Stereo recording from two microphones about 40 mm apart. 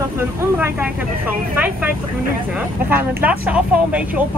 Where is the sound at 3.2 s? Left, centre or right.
Right.